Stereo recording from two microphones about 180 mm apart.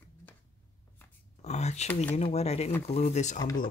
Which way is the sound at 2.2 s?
35° left (ahead or behind).